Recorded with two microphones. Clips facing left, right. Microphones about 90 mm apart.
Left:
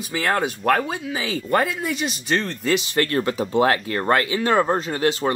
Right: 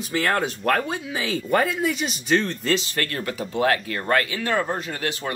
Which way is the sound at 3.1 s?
30° left (ahead or behind).